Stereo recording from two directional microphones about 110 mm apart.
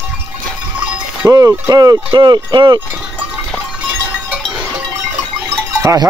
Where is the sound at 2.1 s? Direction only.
40° right (ahead or behind).